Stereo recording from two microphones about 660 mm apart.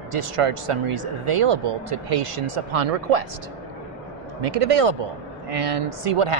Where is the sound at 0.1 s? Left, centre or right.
Right.